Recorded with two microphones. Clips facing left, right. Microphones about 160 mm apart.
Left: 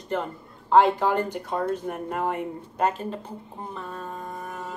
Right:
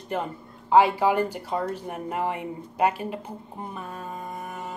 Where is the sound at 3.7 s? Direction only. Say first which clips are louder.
Left 2 dB; 15° right (ahead or behind).